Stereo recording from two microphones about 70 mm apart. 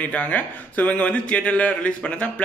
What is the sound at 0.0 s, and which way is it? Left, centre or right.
A man's voice, left.